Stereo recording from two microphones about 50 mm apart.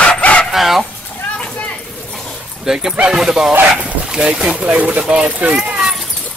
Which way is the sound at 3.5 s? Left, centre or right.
Right.